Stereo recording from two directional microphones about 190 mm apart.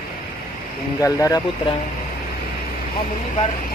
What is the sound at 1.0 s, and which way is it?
Speech, 20° left (ahead or behind).